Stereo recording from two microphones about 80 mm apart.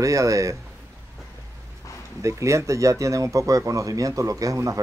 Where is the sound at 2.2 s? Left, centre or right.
Right.